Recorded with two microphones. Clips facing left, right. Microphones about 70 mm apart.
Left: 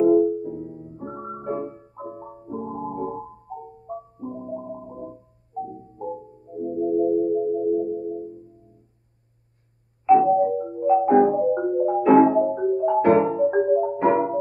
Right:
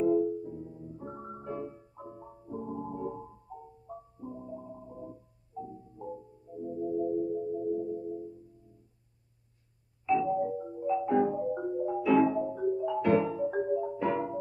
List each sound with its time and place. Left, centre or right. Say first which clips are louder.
0.0 s music: left 10 dB; left
10.0 s marimba: left 12 dB; left